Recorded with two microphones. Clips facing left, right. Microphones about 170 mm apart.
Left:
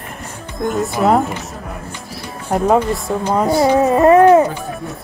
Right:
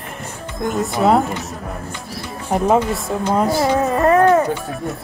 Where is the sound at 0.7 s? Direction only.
Centre (ahead or behind).